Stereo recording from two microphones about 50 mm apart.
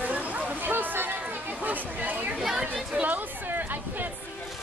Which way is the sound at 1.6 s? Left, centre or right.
Right.